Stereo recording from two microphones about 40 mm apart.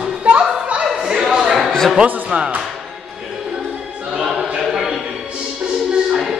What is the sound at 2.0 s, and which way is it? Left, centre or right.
Speech, right.